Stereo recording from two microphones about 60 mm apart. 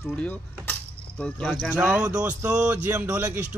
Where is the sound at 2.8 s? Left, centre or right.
Right.